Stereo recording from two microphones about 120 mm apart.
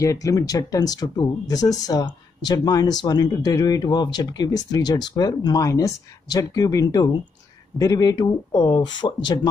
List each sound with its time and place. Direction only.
0.0 s speech: 25° left (ahead or behind)